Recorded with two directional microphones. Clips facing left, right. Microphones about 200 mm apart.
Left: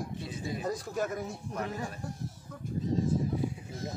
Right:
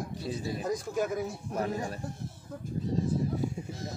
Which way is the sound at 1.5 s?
35° right (ahead or behind).